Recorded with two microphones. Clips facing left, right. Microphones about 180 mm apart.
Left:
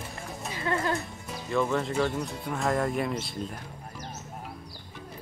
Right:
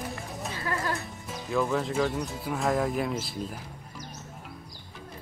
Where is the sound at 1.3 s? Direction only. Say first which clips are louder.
Even; centre (ahead or behind).